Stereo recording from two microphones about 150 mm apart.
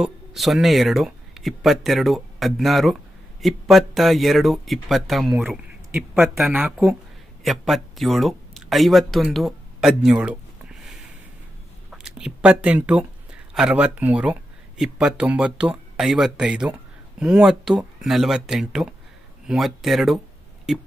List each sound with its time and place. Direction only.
0.0 s speech: centre (ahead or behind)
5.9 s speech: 15° right (ahead or behind)
7.4 s speech: centre (ahead or behind)